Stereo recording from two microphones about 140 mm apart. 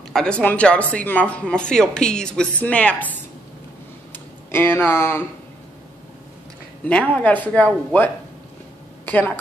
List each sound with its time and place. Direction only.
0.1 s speech: 5° left (ahead or behind)
4.5 s speech: 15° left (ahead or behind)
6.9 s speech: 10° left (ahead or behind)
9.0 s a sound: 15° left (ahead or behind)